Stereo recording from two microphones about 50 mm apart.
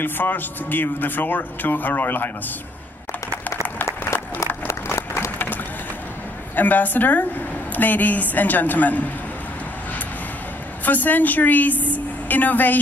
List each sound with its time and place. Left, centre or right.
0.0 s a woman's voice: left
3.8 s applause: left
4.8 s a sound: left
6.5 s a woman's voice: left
10.9 s a woman's voice: left